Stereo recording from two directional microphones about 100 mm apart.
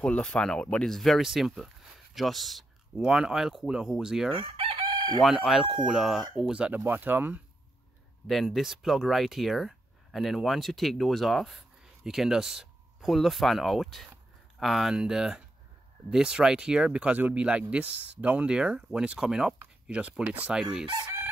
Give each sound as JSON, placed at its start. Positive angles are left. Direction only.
{"t": 0.0, "sound": "speech", "side_deg": 10}
{"t": 4.3, "sound": "chicken", "side_deg": -60}
{"t": 5.2, "sound": "speech", "side_deg": 0}
{"t": 8.3, "sound": "speech", "side_deg": 0}